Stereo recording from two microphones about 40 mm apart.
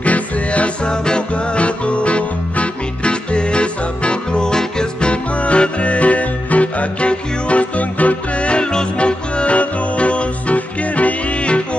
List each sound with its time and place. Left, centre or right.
0.0 s music: left
0.8 s music: left
5.1 s music: left